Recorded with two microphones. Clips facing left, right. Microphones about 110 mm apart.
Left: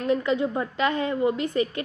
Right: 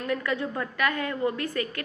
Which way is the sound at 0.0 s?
20° left (ahead or behind).